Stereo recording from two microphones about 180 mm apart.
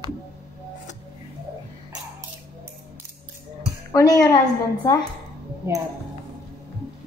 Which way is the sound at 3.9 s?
20° left (ahead or behind).